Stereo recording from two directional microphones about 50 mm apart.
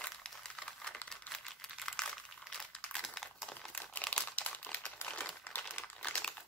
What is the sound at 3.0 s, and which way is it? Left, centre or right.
Crumpling, centre.